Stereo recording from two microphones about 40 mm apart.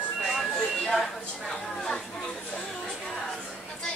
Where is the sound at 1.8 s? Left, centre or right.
Centre.